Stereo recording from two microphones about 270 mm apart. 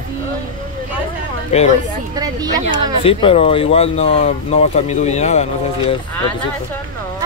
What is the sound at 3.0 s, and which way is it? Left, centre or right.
Speech, left.